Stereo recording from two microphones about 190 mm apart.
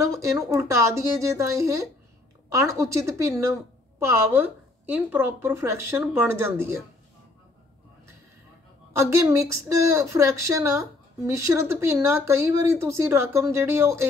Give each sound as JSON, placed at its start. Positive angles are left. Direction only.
{"t": 0.0, "sound": "a woman's voice", "side_deg": -15}
{"t": 8.9, "sound": "a woman's voice", "side_deg": -15}